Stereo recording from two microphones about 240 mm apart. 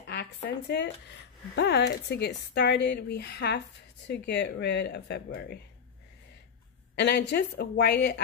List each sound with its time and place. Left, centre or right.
0.0 s speech: left
7.0 s speech: left